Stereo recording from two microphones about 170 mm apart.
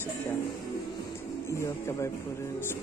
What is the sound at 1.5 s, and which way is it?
Speech, 15° left (ahead or behind).